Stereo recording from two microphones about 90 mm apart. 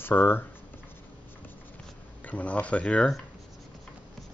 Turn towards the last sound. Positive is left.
turn(degrees=10)  # may be behind; listen again after turning